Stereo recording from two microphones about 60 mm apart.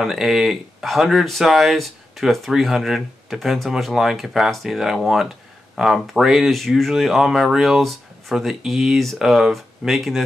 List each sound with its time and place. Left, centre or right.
0.0 s speech: centre